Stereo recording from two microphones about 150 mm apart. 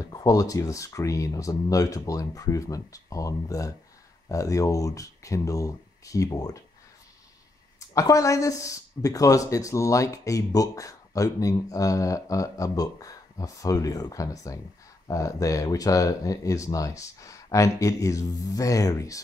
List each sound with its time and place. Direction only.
0.0 s speech: 25° left (ahead or behind)
7.9 s speech: 20° left (ahead or behind)